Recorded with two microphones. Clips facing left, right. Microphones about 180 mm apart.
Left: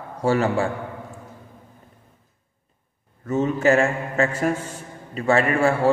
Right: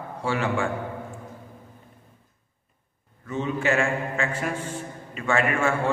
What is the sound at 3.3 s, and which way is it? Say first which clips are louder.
A man's voice: left 6 dB; 45° left (ahead or behind).